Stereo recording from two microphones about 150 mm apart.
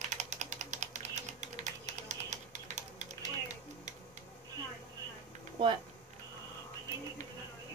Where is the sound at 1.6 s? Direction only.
50° right (ahead or behind).